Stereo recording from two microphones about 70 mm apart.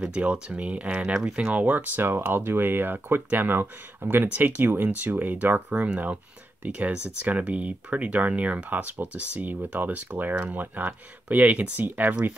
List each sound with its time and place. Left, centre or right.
0.1 s speech: centre